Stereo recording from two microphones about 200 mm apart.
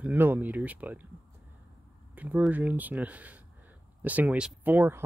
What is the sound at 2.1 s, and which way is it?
Speech, 5° right (ahead or behind).